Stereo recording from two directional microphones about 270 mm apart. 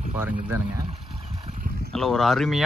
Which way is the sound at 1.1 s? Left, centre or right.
Right.